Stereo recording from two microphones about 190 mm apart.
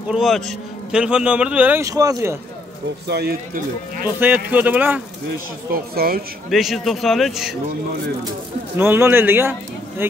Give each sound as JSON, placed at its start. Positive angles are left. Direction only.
{"t": 0.1, "sound": "a man's voice", "side_deg": 0}
{"t": 3.1, "sound": "speech", "side_deg": -55}
{"t": 4.2, "sound": "a man's voice", "side_deg": -10}
{"t": 5.7, "sound": "speech", "side_deg": -50}
{"t": 6.5, "sound": "a man's voice", "side_deg": 0}
{"t": 8.7, "sound": "a man's voice", "side_deg": -10}